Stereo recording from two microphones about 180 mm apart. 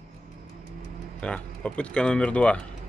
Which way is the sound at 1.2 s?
5° left (ahead or behind).